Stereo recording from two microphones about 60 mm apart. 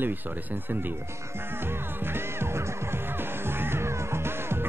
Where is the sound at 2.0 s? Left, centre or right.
Right.